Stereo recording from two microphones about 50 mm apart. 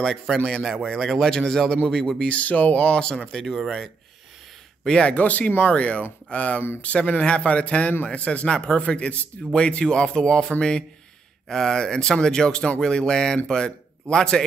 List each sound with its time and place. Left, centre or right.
0.0 s a man's voice: centre
2.2 s a man's voice: left
5.1 s speech: left